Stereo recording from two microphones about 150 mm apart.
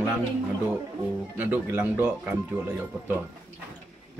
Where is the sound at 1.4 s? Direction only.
10° right (ahead or behind).